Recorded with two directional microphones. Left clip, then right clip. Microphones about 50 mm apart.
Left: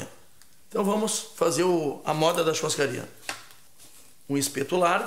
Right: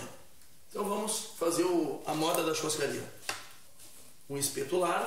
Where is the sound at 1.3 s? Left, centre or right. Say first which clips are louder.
Left 6 dB; left.